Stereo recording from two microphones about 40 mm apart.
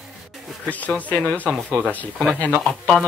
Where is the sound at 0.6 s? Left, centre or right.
Left.